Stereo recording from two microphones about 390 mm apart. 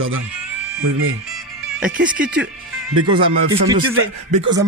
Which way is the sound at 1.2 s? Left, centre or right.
Centre.